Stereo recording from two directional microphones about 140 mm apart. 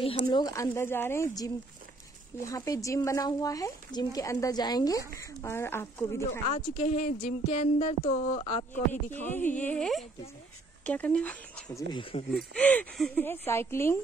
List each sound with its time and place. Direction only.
0.0 s speech: 40° left (ahead or behind)
0.4 s a woman's voice: 25° left (ahead or behind)
6.5 s speech: 55° left (ahead or behind); by 8.6 s 35° left (ahead or behind)
9.1 s a woman's voice: 15° left (ahead or behind)
12.0 s speech: 40° left (ahead or behind)
12.5 s a woman's voice: 10° left (ahead or behind)